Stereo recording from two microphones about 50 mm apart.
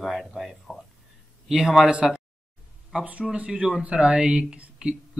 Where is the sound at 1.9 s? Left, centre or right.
Centre.